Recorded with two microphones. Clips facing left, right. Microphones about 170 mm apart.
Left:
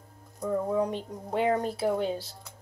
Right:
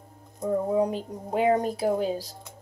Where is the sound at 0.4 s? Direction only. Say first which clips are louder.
Right 3 dB; 20° right (ahead or behind).